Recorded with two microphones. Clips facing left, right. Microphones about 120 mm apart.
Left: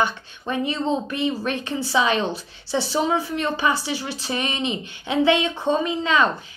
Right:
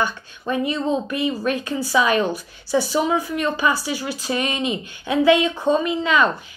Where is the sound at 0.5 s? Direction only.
30° left (ahead or behind).